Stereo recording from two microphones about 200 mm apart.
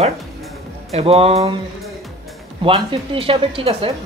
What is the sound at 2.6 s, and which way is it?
Speech, 25° right (ahead or behind).